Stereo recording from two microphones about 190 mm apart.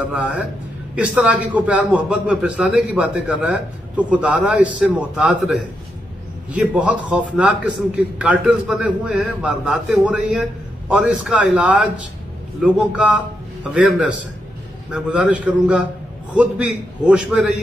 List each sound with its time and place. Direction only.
0.0 s a man's voice: 5° right (ahead or behind)